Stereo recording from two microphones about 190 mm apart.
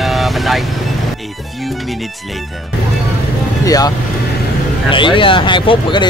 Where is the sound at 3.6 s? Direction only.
20° left (ahead or behind).